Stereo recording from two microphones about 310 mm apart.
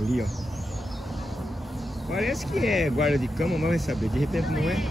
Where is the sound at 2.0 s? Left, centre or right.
Centre.